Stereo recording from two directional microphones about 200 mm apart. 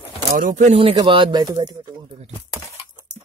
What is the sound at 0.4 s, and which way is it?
Speech, 40° right (ahead or behind).